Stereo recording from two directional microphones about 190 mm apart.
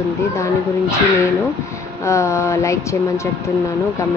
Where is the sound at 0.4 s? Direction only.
15° left (ahead or behind).